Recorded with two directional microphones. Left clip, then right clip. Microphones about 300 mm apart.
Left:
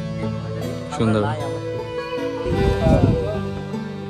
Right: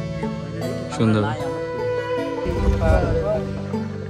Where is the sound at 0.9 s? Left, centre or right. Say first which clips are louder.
Left 1 dB; centre.